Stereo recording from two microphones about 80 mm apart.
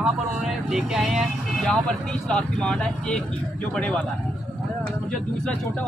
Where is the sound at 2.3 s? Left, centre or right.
Centre.